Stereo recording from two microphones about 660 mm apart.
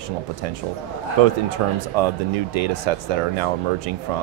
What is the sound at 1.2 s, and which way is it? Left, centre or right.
Speech, right.